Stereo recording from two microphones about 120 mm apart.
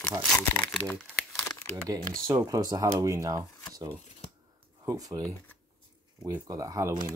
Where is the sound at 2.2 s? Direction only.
30° right (ahead or behind).